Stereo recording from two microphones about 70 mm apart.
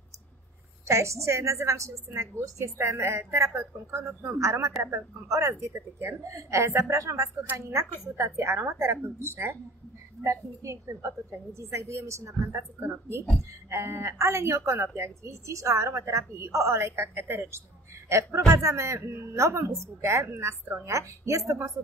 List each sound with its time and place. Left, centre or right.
0.8 s a woman's voice: right